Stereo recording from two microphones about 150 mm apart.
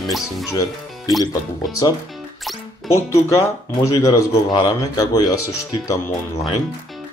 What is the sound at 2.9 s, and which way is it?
Speech, 20° left (ahead or behind).